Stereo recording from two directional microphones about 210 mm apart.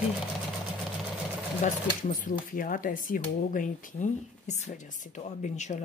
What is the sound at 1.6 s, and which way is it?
Speech, 40° left (ahead or behind).